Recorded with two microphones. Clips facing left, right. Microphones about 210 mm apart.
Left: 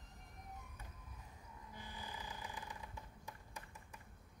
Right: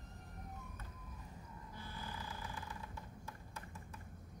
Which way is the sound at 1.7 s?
15° left (ahead or behind).